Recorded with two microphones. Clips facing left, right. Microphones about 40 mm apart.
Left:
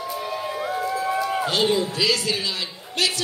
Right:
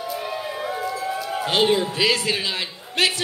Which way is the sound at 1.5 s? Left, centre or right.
Right.